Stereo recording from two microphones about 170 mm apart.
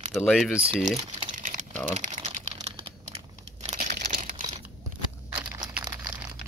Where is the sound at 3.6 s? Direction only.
50° right (ahead or behind).